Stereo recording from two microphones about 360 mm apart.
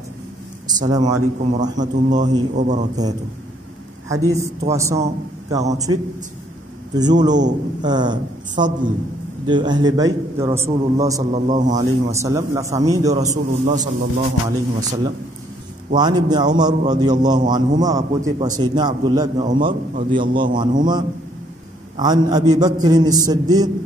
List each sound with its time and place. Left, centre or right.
0.7 s a man's voice: centre
4.3 s a man's voice: centre
7.0 s a man's voice: centre
11.4 s a man's voice: right
11.7 s a man's voice: centre
15.9 s a man's voice: centre